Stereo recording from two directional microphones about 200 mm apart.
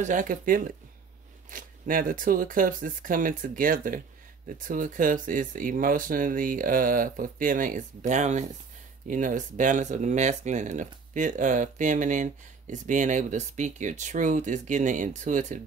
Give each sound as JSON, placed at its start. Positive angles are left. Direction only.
{"t": 0.0, "sound": "speech", "side_deg": -40}